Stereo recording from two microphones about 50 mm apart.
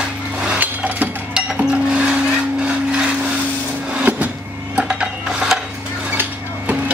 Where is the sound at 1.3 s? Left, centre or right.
Centre.